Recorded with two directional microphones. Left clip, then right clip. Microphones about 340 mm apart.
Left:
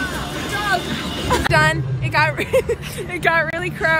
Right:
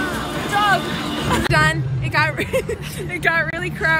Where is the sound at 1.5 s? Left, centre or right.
Centre.